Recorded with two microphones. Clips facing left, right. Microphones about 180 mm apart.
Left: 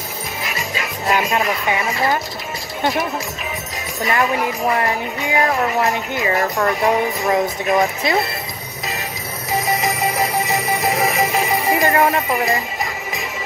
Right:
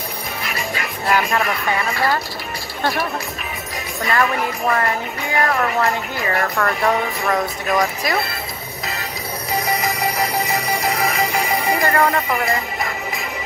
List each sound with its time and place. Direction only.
1.0 s speech: 20° left (ahead or behind)
10.8 s music: centre (ahead or behind)
11.6 s speech: 20° left (ahead or behind)